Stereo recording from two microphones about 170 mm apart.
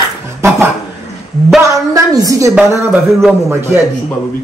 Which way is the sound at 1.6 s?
20° right (ahead or behind).